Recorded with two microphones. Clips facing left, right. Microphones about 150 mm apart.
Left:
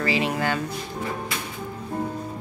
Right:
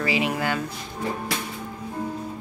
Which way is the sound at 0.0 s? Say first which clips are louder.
Left 1 dB; 10° right (ahead or behind).